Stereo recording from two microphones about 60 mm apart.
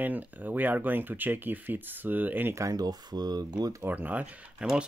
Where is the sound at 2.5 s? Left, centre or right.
Right.